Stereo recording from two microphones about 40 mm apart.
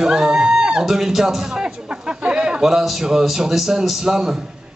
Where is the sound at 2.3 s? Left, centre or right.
Right.